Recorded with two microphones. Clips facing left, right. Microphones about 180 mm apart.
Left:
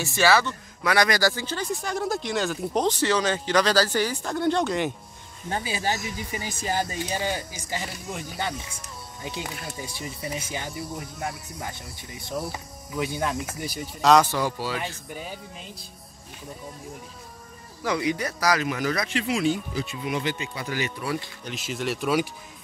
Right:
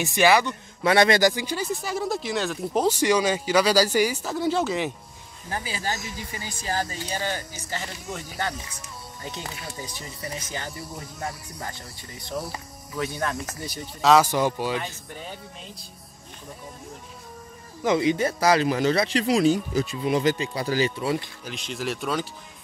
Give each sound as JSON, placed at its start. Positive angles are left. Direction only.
{"t": 0.0, "sound": "speech", "side_deg": -15}
{"t": 1.7, "sound": "speech", "side_deg": 0}
{"t": 5.5, "sound": "speech", "side_deg": 25}
{"t": 12.9, "sound": "speech", "side_deg": 15}
{"t": 14.1, "sound": "speech", "side_deg": -15}
{"t": 15.1, "sound": "speech", "side_deg": 5}
{"t": 17.8, "sound": "speech", "side_deg": -25}
{"t": 21.5, "sound": "speech", "side_deg": 0}